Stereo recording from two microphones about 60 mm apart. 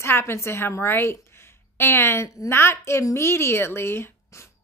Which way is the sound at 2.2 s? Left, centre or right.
Left.